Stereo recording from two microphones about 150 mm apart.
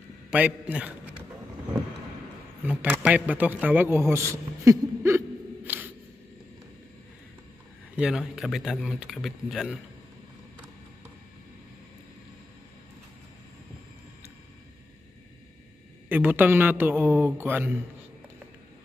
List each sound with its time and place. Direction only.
0.3 s a man's voice: 10° right (ahead or behind)
2.6 s a man's voice: 10° right (ahead or behind)
5.7 s a sound: 10° right (ahead or behind)
7.9 s a man's voice: 5° right (ahead or behind)
16.1 s a man's voice: 10° right (ahead or behind)